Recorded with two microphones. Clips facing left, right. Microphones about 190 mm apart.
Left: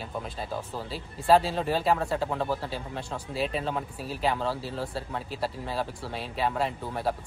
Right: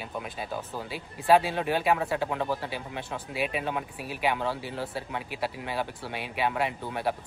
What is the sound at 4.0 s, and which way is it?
Speech, 30° left (ahead or behind).